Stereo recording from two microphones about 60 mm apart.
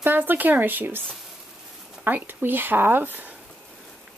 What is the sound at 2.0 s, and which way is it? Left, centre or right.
Speech, right.